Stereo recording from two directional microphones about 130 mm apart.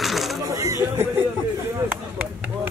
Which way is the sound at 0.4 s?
25° right (ahead or behind).